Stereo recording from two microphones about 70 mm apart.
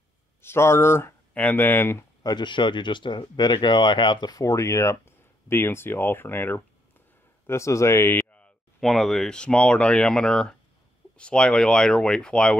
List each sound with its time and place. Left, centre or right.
0.4 s speech: left
1.3 s speech: left
2.2 s speech: left
7.4 s speech: left
8.3 s a sound: centre
8.8 s speech: centre
9.3 s speech: centre